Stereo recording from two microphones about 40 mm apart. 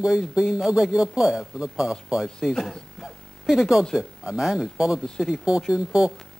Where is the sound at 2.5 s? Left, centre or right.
Centre.